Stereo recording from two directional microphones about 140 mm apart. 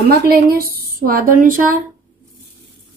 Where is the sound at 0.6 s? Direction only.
90° right.